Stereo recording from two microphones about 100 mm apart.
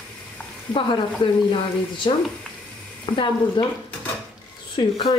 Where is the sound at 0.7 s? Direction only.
55° left (ahead or behind).